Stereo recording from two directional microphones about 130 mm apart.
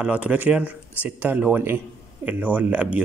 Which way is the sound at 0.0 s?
10° right (ahead or behind).